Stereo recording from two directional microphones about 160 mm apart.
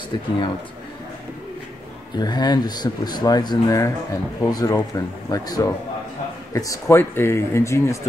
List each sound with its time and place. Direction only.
2.1 s speech: 25° left (ahead or behind)